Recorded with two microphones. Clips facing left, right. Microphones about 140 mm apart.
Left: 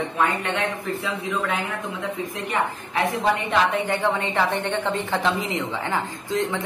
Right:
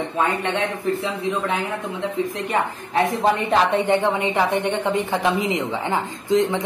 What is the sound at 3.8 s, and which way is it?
A woman's voice, 20° right (ahead or behind).